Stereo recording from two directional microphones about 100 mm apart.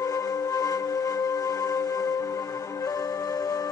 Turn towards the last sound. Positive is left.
turn(degrees=35)  # may be behind; listen again after turning